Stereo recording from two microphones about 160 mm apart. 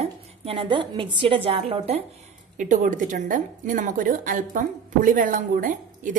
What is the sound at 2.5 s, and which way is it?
A woman's voice, 50° right (ahead or behind).